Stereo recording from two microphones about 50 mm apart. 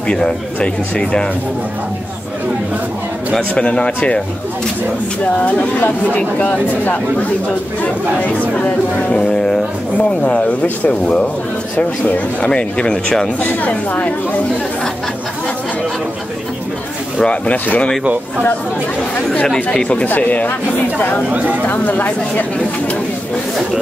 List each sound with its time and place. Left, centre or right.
0.1 s speech: centre
3.3 s speech: centre
5.2 s speech: left
9.1 s speech: centre
12.4 s speech: left
13.4 s speech: left
17.2 s speech: left
19.3 s speech: centre
20.1 s speech: left
21.3 s speech: right
21.6 s speech: left